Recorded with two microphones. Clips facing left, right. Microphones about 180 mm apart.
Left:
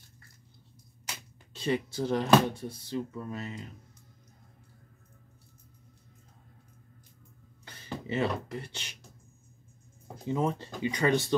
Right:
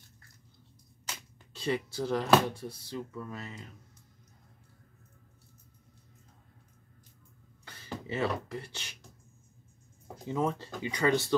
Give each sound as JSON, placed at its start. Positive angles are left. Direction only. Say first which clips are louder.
{"t": 1.0, "sound": "speech", "louder": "even", "side_deg": 20}
{"t": 7.6, "sound": "speech", "louder": "left 2 dB", "side_deg": 20}
{"t": 10.3, "sound": "speech", "louder": "left 1 dB", "side_deg": 20}